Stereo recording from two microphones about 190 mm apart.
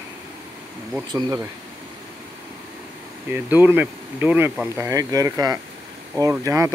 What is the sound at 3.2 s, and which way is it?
Speech, 10° right (ahead or behind).